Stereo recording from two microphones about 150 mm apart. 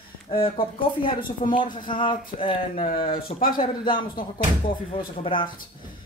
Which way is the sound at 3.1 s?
70° left (ahead or behind).